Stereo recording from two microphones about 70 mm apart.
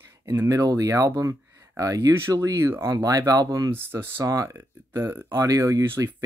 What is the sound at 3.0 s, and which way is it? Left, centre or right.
Speech, right.